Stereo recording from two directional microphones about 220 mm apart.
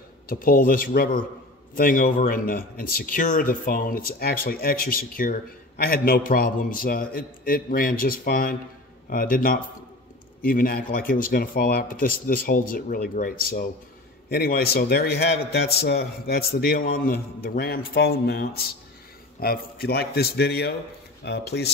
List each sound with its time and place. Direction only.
0.3 s a man's voice: 40° left (ahead or behind)